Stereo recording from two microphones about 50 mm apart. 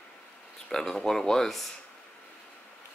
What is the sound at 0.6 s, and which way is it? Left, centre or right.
Speech, centre.